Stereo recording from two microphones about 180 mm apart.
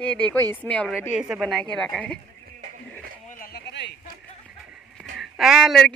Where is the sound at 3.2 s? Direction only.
50° left (ahead or behind).